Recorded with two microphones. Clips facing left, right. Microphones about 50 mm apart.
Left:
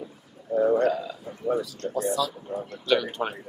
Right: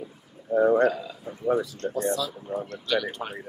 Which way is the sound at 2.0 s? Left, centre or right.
Centre.